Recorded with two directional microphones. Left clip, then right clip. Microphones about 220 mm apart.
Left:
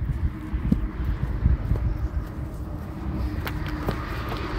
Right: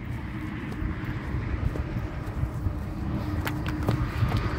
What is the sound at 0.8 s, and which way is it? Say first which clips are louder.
Vehicle: right 1 dB; 45° right (ahead or behind).